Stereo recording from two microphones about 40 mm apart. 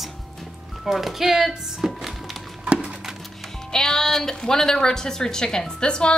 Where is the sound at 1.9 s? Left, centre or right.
Centre.